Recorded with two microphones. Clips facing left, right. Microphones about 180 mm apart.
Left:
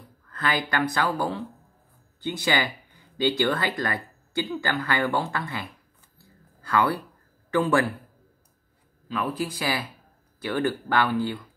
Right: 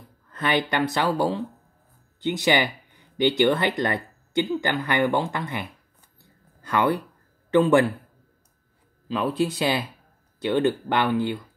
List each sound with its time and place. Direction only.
0.3 s speech: 25° right (ahead or behind)
9.1 s speech: 25° right (ahead or behind)